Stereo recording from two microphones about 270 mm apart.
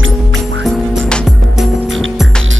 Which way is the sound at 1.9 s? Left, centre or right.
Right.